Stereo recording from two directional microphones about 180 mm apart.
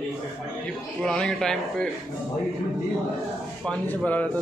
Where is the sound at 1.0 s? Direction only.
5° left (ahead or behind).